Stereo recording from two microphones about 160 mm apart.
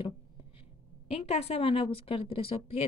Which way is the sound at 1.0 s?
40° left (ahead or behind).